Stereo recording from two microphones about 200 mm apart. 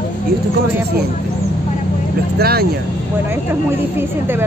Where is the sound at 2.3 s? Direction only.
50° right (ahead or behind).